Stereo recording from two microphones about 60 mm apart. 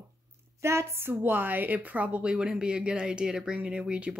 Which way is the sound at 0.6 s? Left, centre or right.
Right.